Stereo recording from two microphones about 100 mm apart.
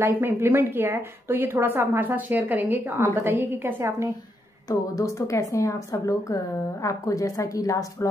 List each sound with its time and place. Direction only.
0.0 s speech: 25° right (ahead or behind)
4.6 s a woman's voice: 30° left (ahead or behind)